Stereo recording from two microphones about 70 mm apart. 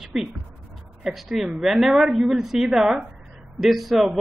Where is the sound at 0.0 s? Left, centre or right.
Centre.